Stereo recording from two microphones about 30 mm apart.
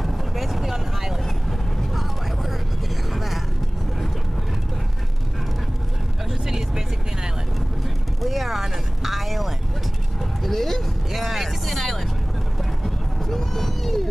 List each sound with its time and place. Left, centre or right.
0.0 s vehicle: centre
3.1 s vehicle: centre
6.4 s vehicle: centre
8.2 s vehicle: centre
12.8 s a sound: centre